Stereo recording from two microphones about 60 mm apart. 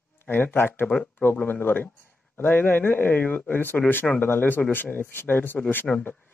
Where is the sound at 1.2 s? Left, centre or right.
Left.